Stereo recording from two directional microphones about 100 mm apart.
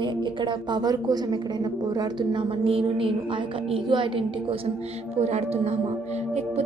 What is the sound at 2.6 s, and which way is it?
Speech, 65° right (ahead or behind).